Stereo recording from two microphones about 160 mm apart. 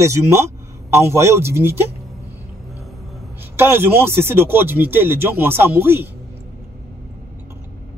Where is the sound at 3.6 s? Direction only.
15° right (ahead or behind).